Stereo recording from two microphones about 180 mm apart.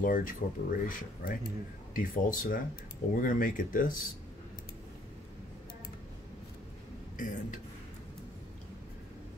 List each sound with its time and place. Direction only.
0.0 s speech: 50° left (ahead or behind)
7.2 s speech: 45° left (ahead or behind)